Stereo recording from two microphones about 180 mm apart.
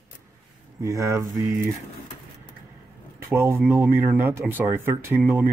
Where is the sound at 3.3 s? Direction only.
15° right (ahead or behind).